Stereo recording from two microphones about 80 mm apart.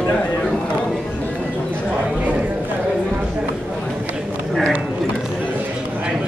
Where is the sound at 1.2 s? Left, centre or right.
Centre.